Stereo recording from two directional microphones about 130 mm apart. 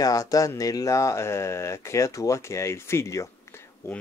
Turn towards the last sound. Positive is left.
turn(degrees=20)  # may be behind; listen again after turning